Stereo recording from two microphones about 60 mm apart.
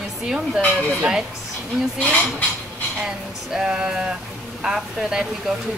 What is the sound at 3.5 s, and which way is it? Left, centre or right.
A woman's voice, centre.